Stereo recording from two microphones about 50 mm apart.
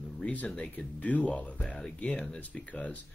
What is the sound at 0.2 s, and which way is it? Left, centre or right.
Speech, left.